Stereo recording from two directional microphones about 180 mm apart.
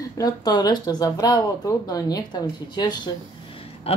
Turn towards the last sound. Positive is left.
turn(degrees=35)  # may be behind; listen again after turning